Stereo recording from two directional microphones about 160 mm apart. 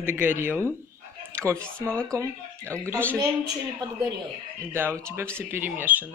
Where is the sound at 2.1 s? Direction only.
20° right (ahead or behind).